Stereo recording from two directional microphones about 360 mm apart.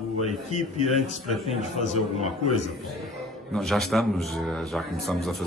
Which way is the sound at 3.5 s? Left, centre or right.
Centre.